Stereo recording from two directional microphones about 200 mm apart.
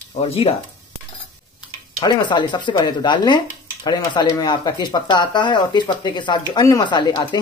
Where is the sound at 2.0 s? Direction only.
20° left (ahead or behind).